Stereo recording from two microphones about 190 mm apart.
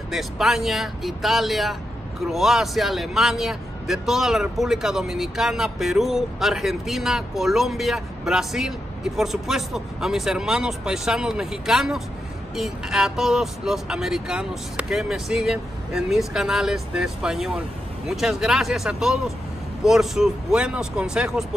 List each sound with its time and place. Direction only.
0.1 s speech: centre (ahead or behind)